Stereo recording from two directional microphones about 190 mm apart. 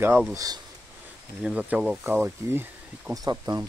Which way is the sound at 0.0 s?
10° right (ahead or behind).